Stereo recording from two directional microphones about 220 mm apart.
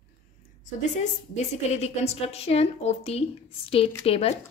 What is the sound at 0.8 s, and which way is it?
A woman's voice, 30° left (ahead or behind).